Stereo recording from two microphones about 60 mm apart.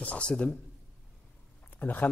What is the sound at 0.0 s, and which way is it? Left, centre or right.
Speech, left.